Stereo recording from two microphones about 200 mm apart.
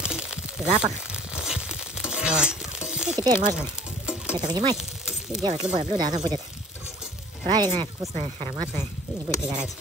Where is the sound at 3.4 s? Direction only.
5° right (ahead or behind).